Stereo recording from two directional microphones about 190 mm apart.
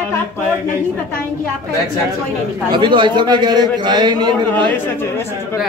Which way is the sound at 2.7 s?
25° right (ahead or behind).